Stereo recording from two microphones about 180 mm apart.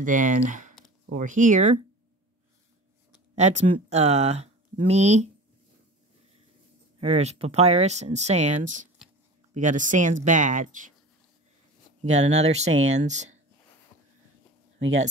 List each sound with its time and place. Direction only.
0.0 s speech: 45° right (ahead or behind)
3.3 s speech: 40° right (ahead or behind)
7.0 s speech: 35° right (ahead or behind)
12.0 s speech: 40° right (ahead or behind)